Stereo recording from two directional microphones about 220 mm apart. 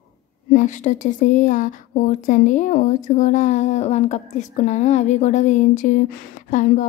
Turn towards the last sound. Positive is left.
turn(degrees=35)  # may be behind; listen again after turning